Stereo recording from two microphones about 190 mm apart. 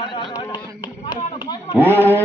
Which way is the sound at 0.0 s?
25° left (ahead or behind).